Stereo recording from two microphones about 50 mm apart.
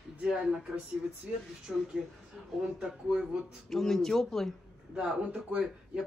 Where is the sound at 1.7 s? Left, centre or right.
Centre.